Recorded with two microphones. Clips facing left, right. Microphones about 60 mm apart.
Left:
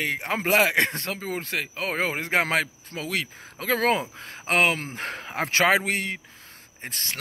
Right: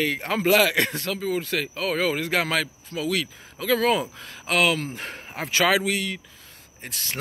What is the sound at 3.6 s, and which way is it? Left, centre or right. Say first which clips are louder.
Speech: right 3 dB; left.